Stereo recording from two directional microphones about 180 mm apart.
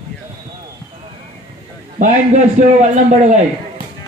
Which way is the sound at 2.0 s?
45° right (ahead or behind).